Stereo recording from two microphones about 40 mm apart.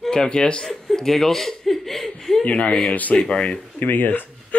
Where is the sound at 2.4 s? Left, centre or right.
Left.